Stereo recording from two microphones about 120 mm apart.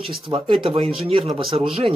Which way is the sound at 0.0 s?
50° right (ahead or behind).